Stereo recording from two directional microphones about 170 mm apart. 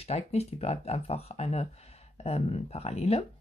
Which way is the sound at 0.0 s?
40° left (ahead or behind).